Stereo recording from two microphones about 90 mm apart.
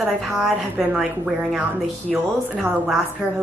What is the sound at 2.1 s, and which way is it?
Speech, 10° right (ahead or behind).